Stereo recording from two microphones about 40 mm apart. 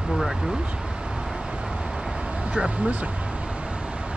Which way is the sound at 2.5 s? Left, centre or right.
Right.